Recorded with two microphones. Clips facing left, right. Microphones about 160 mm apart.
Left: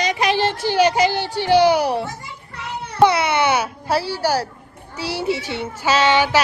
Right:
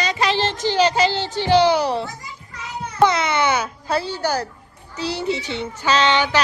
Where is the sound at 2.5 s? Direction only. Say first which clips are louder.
Left 1 dB; 65° left (ahead or behind).